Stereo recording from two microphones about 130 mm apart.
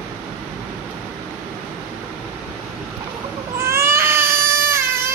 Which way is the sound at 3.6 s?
20° right (ahead or behind).